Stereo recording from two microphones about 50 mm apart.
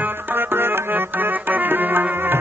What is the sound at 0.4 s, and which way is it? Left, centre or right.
Music, right.